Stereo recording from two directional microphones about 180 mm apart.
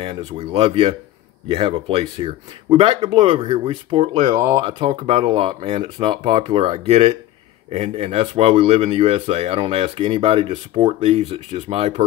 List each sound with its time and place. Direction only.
0.0 s speech: 30° right (ahead or behind)